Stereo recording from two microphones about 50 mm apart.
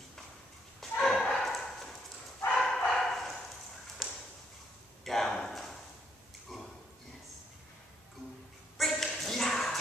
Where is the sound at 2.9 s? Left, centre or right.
Centre.